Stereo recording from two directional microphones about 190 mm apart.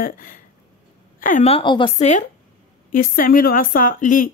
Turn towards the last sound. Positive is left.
turn(degrees=45)  # may be behind; listen again after turning